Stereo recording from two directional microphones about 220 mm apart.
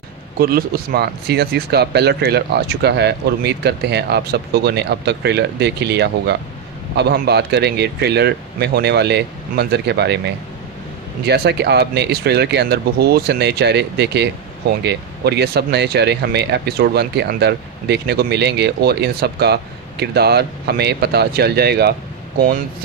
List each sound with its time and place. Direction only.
0.4 s speech: 40° right (ahead or behind)